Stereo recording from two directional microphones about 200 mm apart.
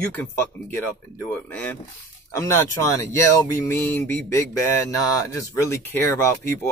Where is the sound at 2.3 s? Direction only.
15° left (ahead or behind).